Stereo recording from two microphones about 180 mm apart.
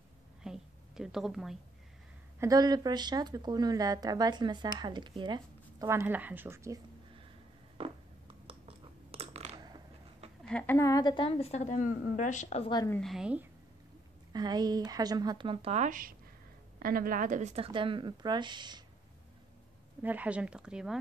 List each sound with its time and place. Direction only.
0.4 s a sound: 5° right (ahead or behind)
2.4 s speech: 20° right (ahead or behind)
7.7 s a sound: 30° right (ahead or behind)
10.4 s a woman's voice: 10° left (ahead or behind); by 12.6 s 40° left (ahead or behind)
12.6 s a woman's voice: 25° left (ahead or behind)
12.9 s a woman's voice: centre (ahead or behind)
14.3 s a woman's voice: 20° right (ahead or behind); by 17.6 s 40° right (ahead or behind)
17.6 s speech: 30° right (ahead or behind)
20.0 s speech: 10° right (ahead or behind)